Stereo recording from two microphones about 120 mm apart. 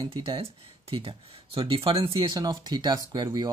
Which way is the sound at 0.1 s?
50° right (ahead or behind).